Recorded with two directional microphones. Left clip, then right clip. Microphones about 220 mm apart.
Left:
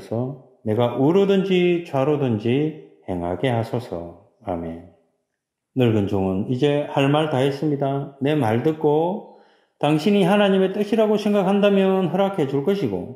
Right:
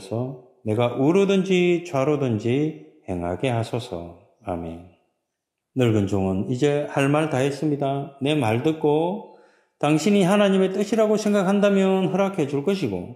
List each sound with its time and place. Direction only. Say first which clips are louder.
0.1 s speech: left 2 dB; 20° right (ahead or behind)
5.8 s speech: left 2 dB; 25° right (ahead or behind)